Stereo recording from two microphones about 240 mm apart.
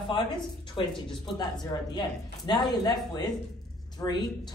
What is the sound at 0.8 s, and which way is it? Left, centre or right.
Speech, left.